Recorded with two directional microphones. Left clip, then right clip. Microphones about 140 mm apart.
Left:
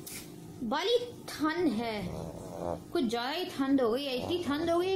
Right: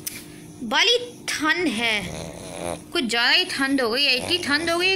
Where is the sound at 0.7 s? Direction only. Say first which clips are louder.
Right 10 dB; 15° left (ahead or behind).